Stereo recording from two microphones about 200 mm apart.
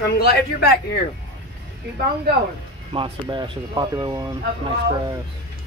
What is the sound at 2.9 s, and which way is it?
Speech, 20° right (ahead or behind).